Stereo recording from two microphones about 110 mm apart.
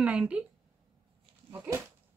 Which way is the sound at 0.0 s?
10° right (ahead or behind).